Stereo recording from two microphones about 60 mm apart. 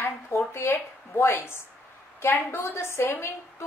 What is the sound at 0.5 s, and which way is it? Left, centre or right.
A woman's voice, left.